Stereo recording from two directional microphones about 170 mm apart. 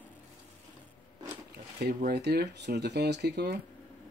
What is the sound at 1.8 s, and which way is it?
Speech, 70° right (ahead or behind).